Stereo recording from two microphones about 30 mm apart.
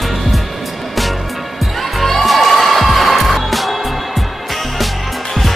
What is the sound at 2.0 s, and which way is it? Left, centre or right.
Music, centre.